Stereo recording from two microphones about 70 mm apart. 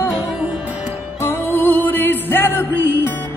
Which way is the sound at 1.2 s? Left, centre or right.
Left.